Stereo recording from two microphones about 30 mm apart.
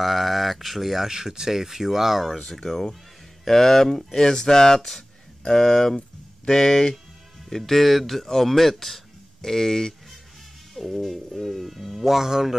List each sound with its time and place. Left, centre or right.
0.0 s speech: centre
1.0 s speech: centre
2.3 s speech: centre
10.7 s speech: centre